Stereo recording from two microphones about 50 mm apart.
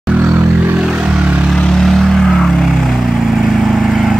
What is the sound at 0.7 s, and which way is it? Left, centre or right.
Vehicle, centre.